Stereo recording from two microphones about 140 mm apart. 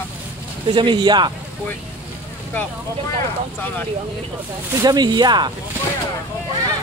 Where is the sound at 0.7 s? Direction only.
35° right (ahead or behind).